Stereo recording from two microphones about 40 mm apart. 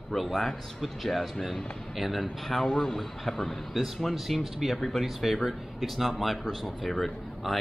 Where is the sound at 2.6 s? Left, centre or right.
Centre.